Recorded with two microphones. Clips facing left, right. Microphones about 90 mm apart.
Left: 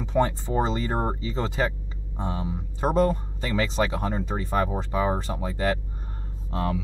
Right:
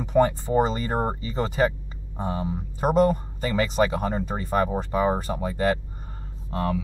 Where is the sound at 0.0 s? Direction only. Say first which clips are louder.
Right 3 dB; 10° right (ahead or behind).